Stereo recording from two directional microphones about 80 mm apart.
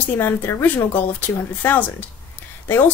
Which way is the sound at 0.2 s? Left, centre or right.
Left.